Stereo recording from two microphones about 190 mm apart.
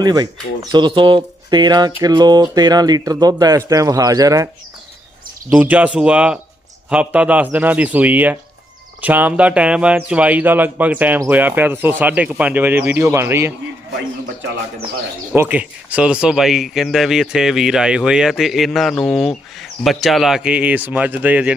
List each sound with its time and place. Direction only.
0.0 s speech: 20° right (ahead or behind)
5.5 s speech: 5° right (ahead or behind)
15.3 s speech: 10° right (ahead or behind)